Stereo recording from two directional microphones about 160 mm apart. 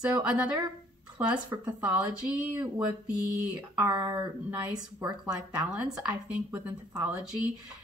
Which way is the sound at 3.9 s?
25° right (ahead or behind).